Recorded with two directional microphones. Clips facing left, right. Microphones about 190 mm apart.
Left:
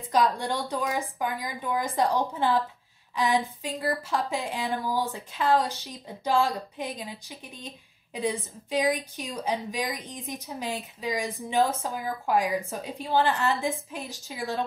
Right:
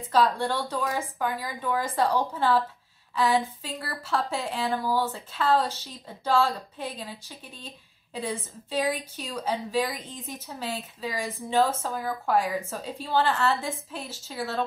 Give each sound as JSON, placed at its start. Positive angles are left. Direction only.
{"t": 0.1, "sound": "a woman's voice", "side_deg": 15}